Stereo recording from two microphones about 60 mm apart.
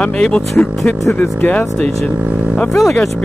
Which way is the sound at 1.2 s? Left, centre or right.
Left.